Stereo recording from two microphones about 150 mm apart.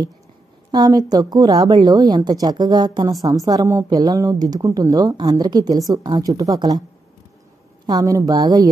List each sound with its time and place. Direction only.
0.7 s a woman's voice: 25° right (ahead or behind)
7.8 s a woman's voice: 25° right (ahead or behind)